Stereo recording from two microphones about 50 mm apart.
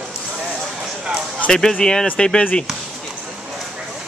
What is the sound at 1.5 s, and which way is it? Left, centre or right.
Speech, centre.